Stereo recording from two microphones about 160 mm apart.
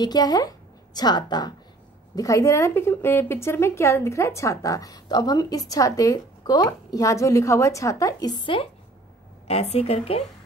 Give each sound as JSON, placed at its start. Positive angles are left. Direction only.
{"t": 0.0, "sound": "a woman's voice", "side_deg": 25}